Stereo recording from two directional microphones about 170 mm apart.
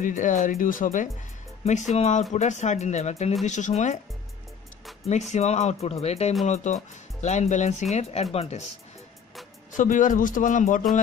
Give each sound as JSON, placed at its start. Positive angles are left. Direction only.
{"t": 0.0, "sound": "speech", "side_deg": 50}
{"t": 1.6, "sound": "speech", "side_deg": 40}
{"t": 5.3, "sound": "speech", "side_deg": 40}
{"t": 9.7, "sound": "speech", "side_deg": 50}